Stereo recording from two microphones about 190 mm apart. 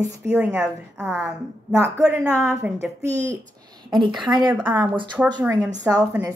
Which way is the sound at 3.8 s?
25° right (ahead or behind).